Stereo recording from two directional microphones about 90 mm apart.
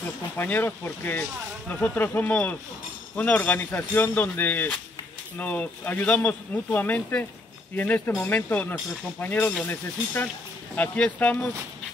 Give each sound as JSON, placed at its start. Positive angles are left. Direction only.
{"t": 0.4, "sound": "speech", "side_deg": 20}
{"t": 10.8, "sound": "speech", "side_deg": 20}